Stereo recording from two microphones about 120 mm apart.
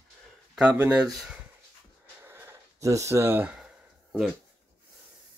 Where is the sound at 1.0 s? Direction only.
5° right (ahead or behind).